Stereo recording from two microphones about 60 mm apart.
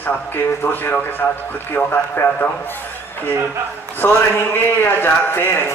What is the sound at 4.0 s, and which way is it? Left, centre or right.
A man's voice, left.